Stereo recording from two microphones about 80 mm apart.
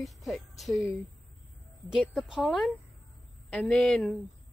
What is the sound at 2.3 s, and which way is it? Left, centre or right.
Speech, centre.